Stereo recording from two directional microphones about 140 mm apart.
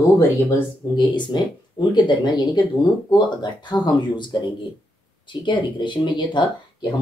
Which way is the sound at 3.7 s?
30° left (ahead or behind).